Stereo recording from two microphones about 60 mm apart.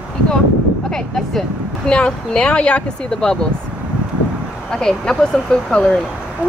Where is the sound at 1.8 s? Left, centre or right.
Centre.